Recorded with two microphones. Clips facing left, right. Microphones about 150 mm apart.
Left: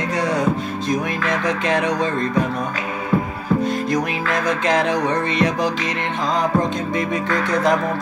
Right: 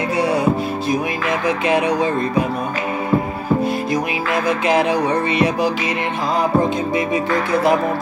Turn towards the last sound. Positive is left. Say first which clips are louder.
# right 2 dB
turn(degrees=-5)  # may be behind; listen again after turning